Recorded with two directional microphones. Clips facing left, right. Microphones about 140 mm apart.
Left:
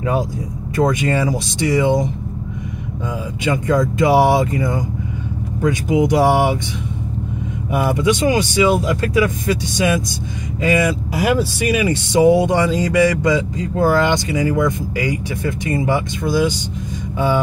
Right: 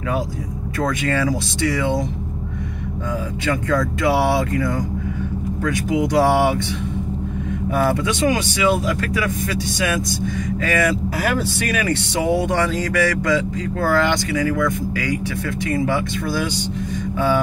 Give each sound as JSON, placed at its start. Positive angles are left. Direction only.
{"t": 0.7, "sound": "speech", "side_deg": 20}
{"t": 3.4, "sound": "speech", "side_deg": 20}
{"t": 7.7, "sound": "speech", "side_deg": 15}
{"t": 10.6, "sound": "speech", "side_deg": 15}